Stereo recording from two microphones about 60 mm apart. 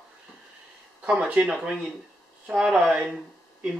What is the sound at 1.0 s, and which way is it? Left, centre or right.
Speech, centre.